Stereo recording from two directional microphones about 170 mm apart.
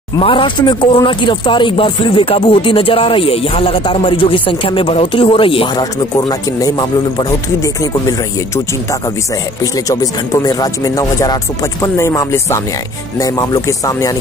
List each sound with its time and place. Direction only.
0.2 s speech: 30° left (ahead or behind)
9.6 s speech: 20° left (ahead or behind)